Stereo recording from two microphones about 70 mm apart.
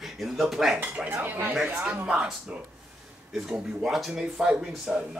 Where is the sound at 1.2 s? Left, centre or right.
Right.